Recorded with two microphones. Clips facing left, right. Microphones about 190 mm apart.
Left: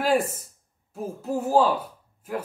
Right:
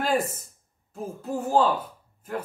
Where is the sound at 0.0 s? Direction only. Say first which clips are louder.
Left 3 dB; 10° left (ahead or behind).